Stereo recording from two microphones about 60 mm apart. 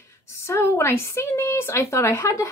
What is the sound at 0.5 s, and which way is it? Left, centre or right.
Speech, left.